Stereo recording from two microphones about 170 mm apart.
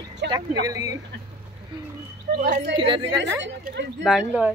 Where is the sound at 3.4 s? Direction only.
90° right.